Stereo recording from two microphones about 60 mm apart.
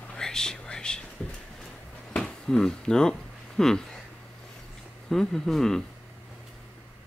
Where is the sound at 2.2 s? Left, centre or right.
Centre.